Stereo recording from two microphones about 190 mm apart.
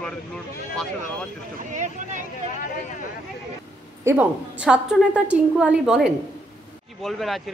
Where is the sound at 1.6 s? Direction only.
40° right (ahead or behind).